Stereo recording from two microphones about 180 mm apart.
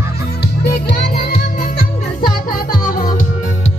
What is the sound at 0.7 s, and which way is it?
Music, 60° left (ahead or behind).